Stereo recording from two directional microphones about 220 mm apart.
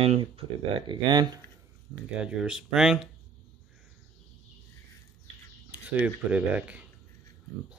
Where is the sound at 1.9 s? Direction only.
5° right (ahead or behind).